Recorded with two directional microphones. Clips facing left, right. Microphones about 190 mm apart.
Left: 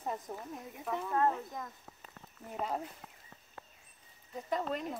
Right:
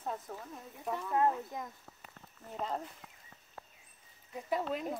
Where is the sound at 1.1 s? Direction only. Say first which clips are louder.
Right 1 dB; 15° right (ahead or behind).